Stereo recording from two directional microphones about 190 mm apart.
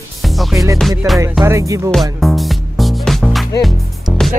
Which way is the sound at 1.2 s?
15° right (ahead or behind).